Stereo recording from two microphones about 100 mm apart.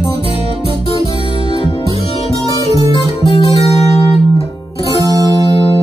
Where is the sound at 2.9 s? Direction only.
55° left (ahead or behind).